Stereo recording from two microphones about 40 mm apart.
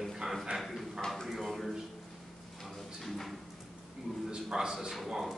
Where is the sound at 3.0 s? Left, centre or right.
Centre.